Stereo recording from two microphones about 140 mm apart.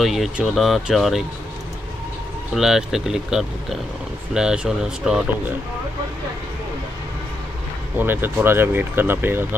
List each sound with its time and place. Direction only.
0.0 s speech: centre (ahead or behind)
2.5 s speech: 5° right (ahead or behind)
8.0 s speech: 15° right (ahead or behind)